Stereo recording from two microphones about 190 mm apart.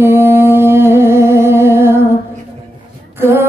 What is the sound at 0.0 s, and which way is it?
Music, 10° right (ahead or behind).